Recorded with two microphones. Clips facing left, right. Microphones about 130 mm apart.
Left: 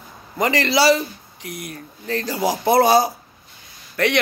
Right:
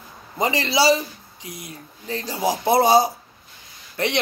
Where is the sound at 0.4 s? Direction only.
20° right (ahead or behind).